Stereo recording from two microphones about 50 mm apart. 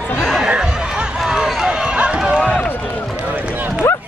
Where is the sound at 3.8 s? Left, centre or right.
Left.